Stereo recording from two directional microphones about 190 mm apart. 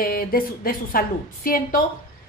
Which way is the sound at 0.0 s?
50° left (ahead or behind).